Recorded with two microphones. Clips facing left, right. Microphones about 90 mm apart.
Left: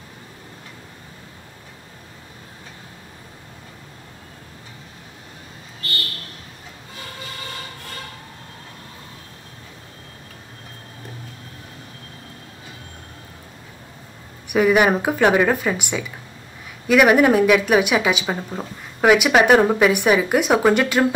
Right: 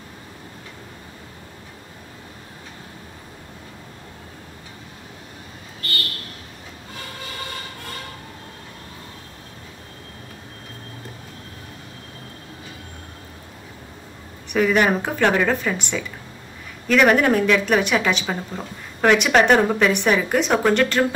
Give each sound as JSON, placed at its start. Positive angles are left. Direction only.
{"t": 14.5, "sound": "a woman's voice", "side_deg": 10}